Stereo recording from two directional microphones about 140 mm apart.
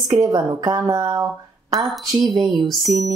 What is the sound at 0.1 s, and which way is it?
Speech, 25° right (ahead or behind).